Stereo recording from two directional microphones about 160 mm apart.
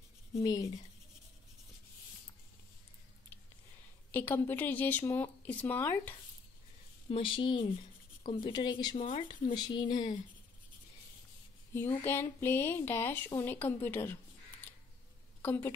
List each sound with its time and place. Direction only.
0.4 s a woman's voice: 20° left (ahead or behind)
4.1 s speech: 10° left (ahead or behind)
7.1 s a woman's voice: 35° left (ahead or behind)
12.0 s speech: 10° left (ahead or behind)